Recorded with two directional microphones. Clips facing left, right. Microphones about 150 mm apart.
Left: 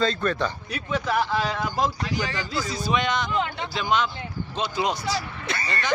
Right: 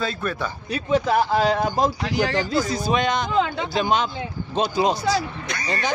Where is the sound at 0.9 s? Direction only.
35° right (ahead or behind).